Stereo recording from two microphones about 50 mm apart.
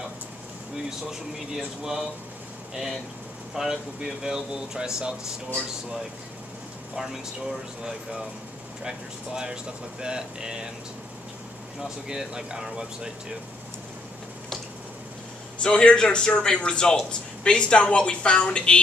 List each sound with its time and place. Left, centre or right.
2.7 s speech: centre
7.0 s speech: centre
12.1 s speech: centre
15.6 s a woman's voice: centre